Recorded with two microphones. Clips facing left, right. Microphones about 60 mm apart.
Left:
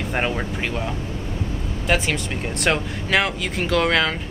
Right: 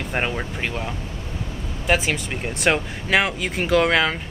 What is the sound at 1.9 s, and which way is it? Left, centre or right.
Speech, centre.